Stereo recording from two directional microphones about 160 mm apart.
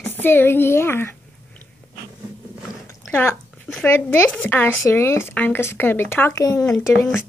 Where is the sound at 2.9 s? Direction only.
15° left (ahead or behind).